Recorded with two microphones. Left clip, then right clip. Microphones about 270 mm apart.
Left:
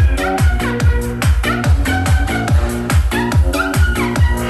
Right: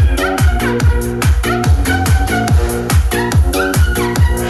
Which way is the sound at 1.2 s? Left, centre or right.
Centre.